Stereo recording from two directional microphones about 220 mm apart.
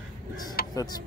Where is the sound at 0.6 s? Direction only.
45° left (ahead or behind).